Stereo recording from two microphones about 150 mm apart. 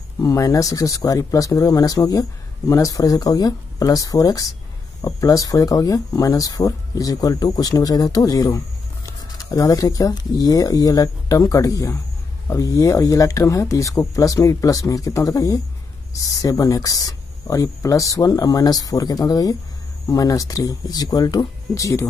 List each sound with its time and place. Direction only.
0.2 s speech: 20° left (ahead or behind)